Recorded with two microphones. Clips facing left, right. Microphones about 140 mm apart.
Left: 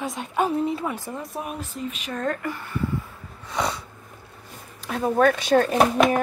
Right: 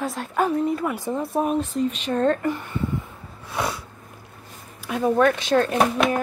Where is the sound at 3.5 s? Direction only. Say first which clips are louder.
Even; 5° right (ahead or behind).